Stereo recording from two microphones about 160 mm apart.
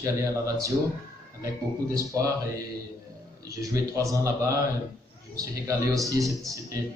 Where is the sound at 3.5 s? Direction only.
20° right (ahead or behind).